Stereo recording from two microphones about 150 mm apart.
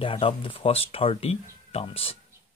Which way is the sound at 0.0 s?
35° left (ahead or behind).